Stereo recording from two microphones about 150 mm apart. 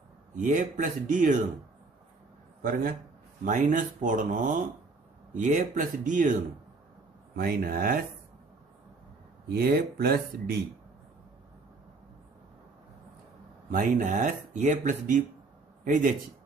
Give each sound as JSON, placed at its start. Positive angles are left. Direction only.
{"t": 0.4, "sound": "speech", "side_deg": -60}
{"t": 2.6, "sound": "speech", "side_deg": -65}
{"t": 7.3, "sound": "speech", "side_deg": -85}
{"t": 9.5, "sound": "speech", "side_deg": -90}
{"t": 13.7, "sound": "a man's voice", "side_deg": -65}